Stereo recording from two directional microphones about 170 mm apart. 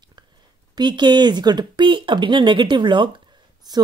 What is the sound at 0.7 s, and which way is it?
Speech, 25° right (ahead or behind).